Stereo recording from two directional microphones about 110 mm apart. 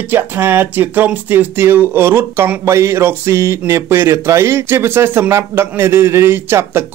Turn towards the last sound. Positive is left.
turn(degrees=-20)  # may be behind; listen again after turning